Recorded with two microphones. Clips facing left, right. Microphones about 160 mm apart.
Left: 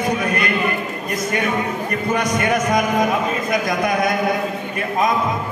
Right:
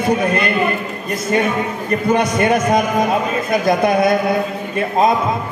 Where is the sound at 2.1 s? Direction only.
30° right (ahead or behind).